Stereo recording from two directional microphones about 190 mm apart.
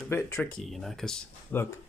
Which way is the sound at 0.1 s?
10° left (ahead or behind).